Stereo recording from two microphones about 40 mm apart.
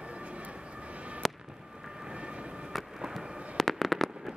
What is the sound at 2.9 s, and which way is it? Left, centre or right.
Fireworks, centre.